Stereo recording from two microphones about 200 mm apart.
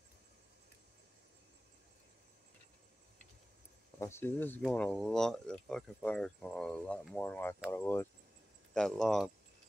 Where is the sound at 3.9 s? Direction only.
10° left (ahead or behind).